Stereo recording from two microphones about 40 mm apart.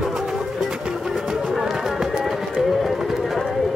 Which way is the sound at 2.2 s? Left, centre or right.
Centre.